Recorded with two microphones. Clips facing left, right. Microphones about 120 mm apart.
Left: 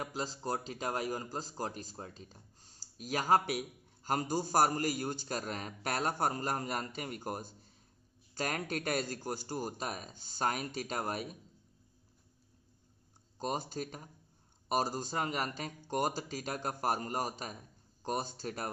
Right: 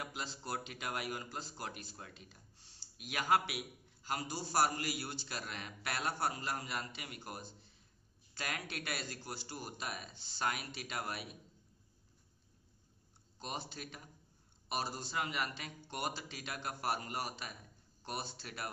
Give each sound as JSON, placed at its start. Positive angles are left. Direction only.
{"t": 0.0, "sound": "speech", "side_deg": 35}
{"t": 13.4, "sound": "speech", "side_deg": 40}